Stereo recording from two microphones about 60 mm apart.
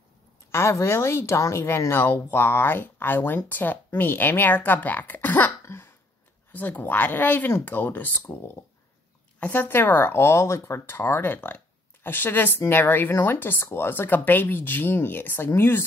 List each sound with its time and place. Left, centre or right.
0.5 s a woman's voice: left
5.7 s hiccup: left
6.5 s speech: left
9.4 s speech: left